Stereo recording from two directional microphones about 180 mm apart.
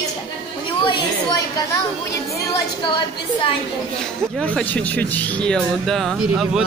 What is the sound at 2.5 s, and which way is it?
Speech, 25° left (ahead or behind).